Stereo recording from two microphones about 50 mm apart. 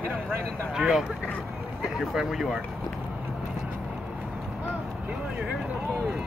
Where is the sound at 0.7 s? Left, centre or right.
Centre.